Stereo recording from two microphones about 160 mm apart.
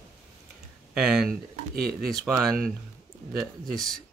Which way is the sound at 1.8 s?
75° right (ahead or behind).